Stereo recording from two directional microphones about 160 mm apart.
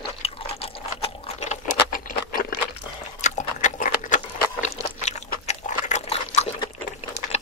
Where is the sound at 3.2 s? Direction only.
50° left (ahead or behind).